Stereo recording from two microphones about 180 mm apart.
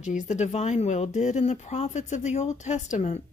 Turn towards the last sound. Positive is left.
turn(degrees=40)  # may be behind; listen again after turning